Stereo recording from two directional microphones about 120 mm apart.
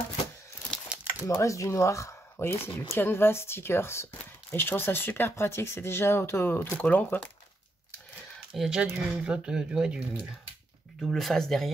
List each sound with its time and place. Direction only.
0.8 s a sound: 10° right (ahead or behind)
1.2 s speech: 25° left (ahead or behind)
8.5 s speech: 5° right (ahead or behind)
11.0 s speech: centre (ahead or behind)